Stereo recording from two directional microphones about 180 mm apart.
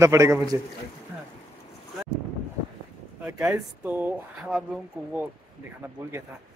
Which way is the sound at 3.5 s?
10° right (ahead or behind).